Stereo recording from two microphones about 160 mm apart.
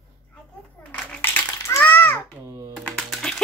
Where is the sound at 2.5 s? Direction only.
20° right (ahead or behind).